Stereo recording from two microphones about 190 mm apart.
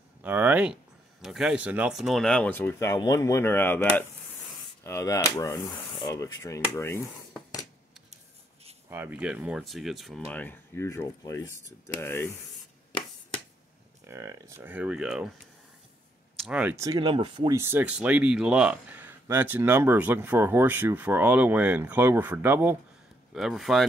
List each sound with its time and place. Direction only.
0.2 s speech: 10° right (ahead or behind); by 7.0 s 15° left (ahead or behind)
8.9 s speech: 10° right (ahead or behind); by 12.3 s 15° left (ahead or behind)
14.0 s speech: 15° right (ahead or behind)
16.3 s speech: 5° right (ahead or behind); by 17.6 s 25° right (ahead or behind)
17.6 s speech: 10° right (ahead or behind)
23.3 s speech: centre (ahead or behind)